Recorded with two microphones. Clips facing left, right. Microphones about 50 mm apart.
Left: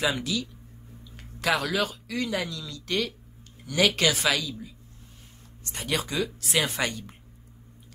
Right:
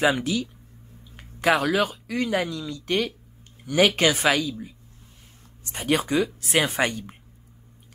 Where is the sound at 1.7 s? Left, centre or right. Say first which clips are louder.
Right 4 dB; right.